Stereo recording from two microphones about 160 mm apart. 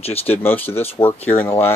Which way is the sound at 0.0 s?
40° left (ahead or behind).